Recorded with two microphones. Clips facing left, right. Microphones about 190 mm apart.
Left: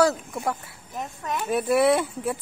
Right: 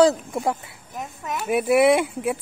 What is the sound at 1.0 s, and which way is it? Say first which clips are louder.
Speech: even; 5° right (ahead or behind).